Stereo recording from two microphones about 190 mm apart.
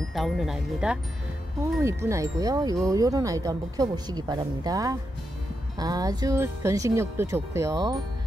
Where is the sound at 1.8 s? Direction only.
15° right (ahead or behind).